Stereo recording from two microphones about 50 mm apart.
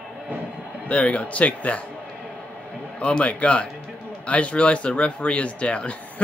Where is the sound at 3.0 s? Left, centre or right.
Left.